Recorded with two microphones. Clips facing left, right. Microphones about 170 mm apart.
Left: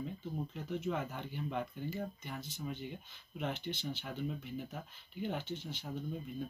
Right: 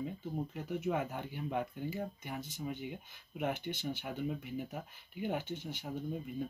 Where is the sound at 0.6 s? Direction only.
10° right (ahead or behind).